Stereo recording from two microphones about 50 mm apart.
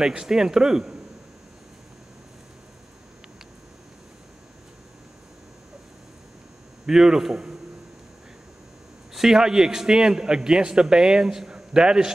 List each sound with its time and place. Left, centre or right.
0.0 s a man's voice: centre
6.9 s a man's voice: centre
9.1 s a man's voice: centre